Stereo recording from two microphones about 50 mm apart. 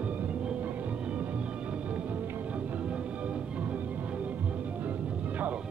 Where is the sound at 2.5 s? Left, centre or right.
Right.